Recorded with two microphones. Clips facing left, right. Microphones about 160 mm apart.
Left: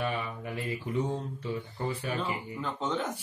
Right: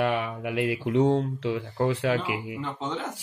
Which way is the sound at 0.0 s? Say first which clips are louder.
Right 7 dB; 80° right.